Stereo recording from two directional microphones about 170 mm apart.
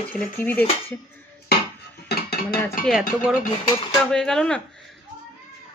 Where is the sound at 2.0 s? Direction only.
65° left (ahead or behind).